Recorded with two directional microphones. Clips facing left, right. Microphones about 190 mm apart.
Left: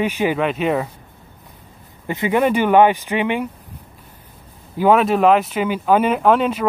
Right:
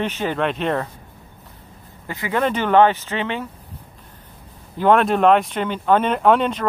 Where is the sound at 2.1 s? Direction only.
20° left (ahead or behind).